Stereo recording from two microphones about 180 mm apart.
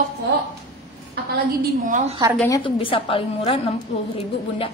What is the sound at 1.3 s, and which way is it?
Speech, 60° right (ahead or behind).